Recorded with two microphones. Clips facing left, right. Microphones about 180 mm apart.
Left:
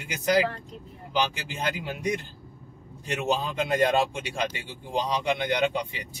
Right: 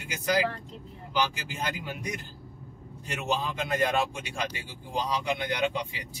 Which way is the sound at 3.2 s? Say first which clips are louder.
Left 3 dB; 30° left (ahead or behind).